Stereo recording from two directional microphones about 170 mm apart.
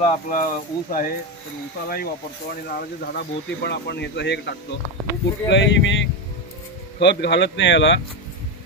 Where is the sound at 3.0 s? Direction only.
75° left (ahead or behind).